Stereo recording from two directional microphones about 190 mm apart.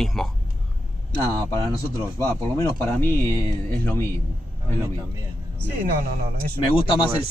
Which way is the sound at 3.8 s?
10° left (ahead or behind).